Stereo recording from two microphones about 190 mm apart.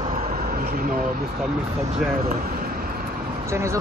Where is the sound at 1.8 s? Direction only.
35° right (ahead or behind).